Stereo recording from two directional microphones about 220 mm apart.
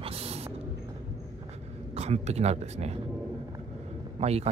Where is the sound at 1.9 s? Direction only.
30° right (ahead or behind).